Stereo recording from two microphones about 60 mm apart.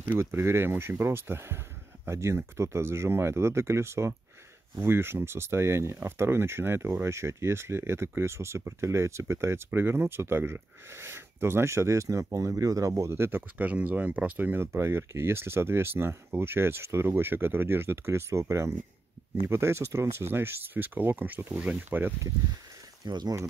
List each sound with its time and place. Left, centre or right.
0.2 s speech: right
13.6 s speech: right